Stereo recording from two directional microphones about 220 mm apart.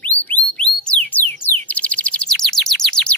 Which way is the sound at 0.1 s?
5° left (ahead or behind).